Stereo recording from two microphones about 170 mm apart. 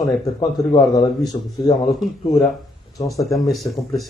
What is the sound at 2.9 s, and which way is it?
Speech, 20° left (ahead or behind).